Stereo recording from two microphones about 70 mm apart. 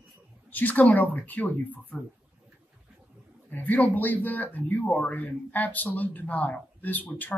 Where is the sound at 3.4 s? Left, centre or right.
Left.